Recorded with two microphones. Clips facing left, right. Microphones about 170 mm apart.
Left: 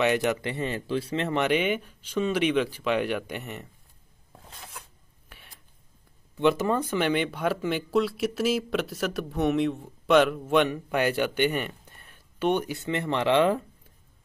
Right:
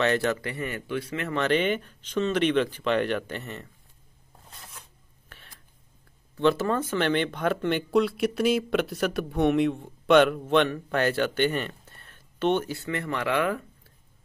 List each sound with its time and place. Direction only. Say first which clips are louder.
0.0 s speech: even; 15° left (ahead or behind)
1.4 s speech: right 3 dB; 10° left (ahead or behind)
4.5 s filing: left 3 dB; 80° left
5.3 s whispering: even; 10° left (ahead or behind)
6.3 s speech: even; 15° left (ahead or behind)